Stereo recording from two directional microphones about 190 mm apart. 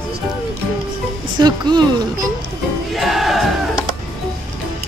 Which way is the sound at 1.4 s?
20° right (ahead or behind).